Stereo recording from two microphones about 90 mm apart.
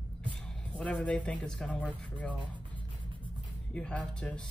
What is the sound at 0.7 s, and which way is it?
Speech, 15° left (ahead or behind).